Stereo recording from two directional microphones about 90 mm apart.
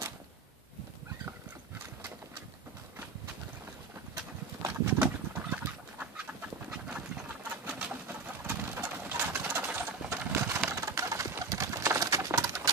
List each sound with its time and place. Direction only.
4.6 s pigeon: 25° right (ahead or behind)
5.0 s bird: 15° right (ahead or behind)
10.0 s coin: 25° right (ahead or behind)
10.7 s pigeon: 35° right (ahead or behind)